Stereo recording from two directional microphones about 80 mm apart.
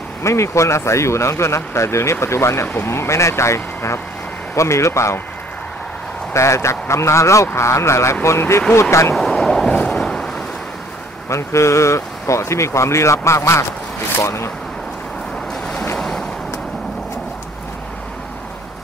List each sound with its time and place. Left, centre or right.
0.2 s speech: left
6.3 s speech: left
9.1 s a sound: centre
11.2 s speech: left
16.0 s waves: centre